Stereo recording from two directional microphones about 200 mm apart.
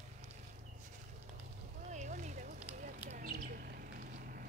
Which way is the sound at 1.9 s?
35° right (ahead or behind).